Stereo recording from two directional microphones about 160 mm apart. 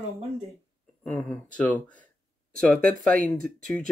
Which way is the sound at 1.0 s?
5° left (ahead or behind).